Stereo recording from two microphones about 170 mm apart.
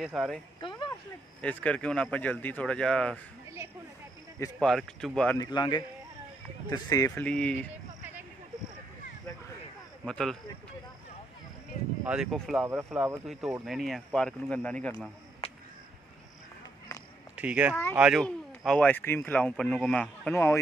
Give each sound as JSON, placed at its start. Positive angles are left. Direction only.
{"t": 0.0, "sound": "speech", "side_deg": 0}
{"t": 0.6, "sound": "speech", "side_deg": 30}
{"t": 1.4, "sound": "speech", "side_deg": 10}
{"t": 4.6, "sound": "speech", "side_deg": 0}
{"t": 5.4, "sound": "speech", "side_deg": 25}
{"t": 7.2, "sound": "speech", "side_deg": 5}
{"t": 10.0, "sound": "speech", "side_deg": 5}
{"t": 12.0, "sound": "speech", "side_deg": -5}
{"t": 12.6, "sound": "speech", "side_deg": -10}
{"t": 13.7, "sound": "speech", "side_deg": 0}
{"t": 17.4, "sound": "speech", "side_deg": -10}